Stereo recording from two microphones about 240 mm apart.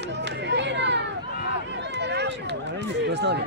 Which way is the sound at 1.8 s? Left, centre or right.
Right.